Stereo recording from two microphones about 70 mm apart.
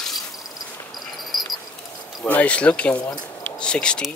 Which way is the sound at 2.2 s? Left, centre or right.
Centre.